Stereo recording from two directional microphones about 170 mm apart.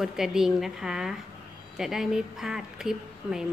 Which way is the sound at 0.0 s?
Centre (ahead or behind).